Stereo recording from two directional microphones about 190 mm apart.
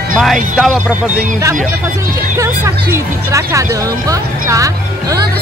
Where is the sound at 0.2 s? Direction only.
Centre (ahead or behind).